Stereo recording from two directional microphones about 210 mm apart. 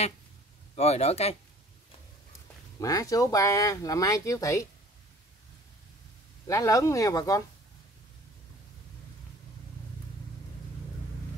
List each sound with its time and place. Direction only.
0.7 s speech: 30° left (ahead or behind)
2.8 s speech: 15° left (ahead or behind)
6.4 s speech: 15° left (ahead or behind)